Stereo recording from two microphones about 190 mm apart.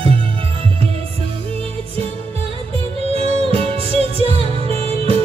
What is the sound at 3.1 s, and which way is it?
Music, 30° right (ahead or behind).